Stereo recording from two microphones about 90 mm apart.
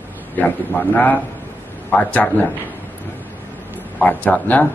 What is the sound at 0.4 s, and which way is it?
A man's voice, 20° left (ahead or behind).